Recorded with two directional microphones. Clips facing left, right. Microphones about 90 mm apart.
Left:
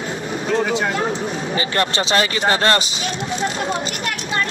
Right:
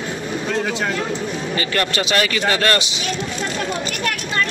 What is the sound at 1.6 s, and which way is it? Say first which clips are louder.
Speech: left 1 dB; 30° left (ahead or behind).